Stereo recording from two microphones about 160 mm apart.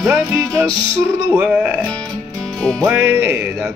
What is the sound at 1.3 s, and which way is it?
Music, 5° right (ahead or behind).